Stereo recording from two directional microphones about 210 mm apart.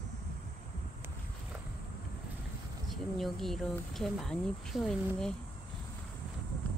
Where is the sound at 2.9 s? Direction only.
Centre (ahead or behind).